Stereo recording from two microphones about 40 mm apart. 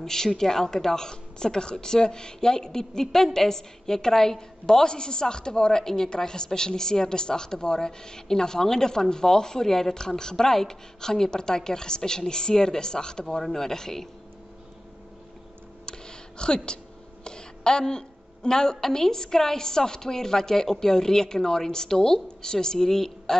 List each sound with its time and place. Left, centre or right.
0.0 s a woman's voice: centre
15.8 s a sound: centre
18.8 s a woman's voice: centre